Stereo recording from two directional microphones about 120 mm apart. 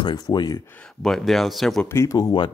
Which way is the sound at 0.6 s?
10° left (ahead or behind).